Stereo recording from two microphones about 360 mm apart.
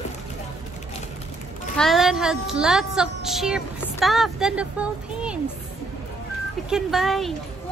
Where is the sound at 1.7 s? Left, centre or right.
Centre.